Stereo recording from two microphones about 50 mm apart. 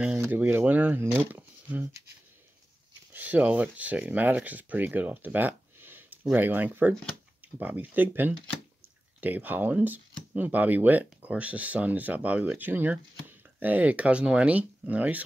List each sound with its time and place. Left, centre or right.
0.3 s speech: right
3.1 s speech: right